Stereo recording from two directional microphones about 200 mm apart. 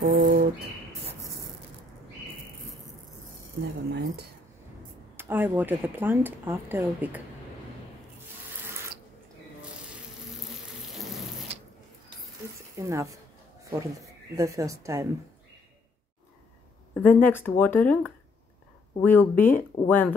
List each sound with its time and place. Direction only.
0.0 s bird: 40° right (ahead or behind)
5.1 s speech: 10° right (ahead or behind)
12.5 s speech: 15° right (ahead or behind)
16.9 s speech: 10° left (ahead or behind)